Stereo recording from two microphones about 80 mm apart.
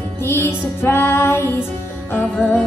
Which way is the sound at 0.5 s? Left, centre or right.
Left.